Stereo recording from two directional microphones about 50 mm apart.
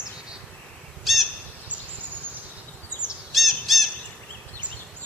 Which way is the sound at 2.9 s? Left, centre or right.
Left.